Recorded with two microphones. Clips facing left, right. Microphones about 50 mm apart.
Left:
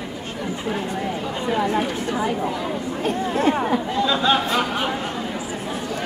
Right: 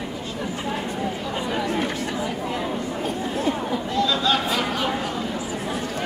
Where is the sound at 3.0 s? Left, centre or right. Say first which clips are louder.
Left 6 dB; left.